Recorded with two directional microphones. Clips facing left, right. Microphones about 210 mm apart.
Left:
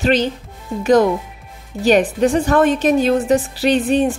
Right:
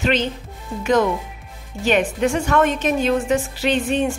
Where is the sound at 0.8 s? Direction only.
35° left (ahead or behind).